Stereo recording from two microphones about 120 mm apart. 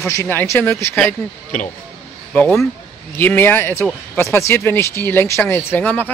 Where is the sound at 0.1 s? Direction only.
20° left (ahead or behind).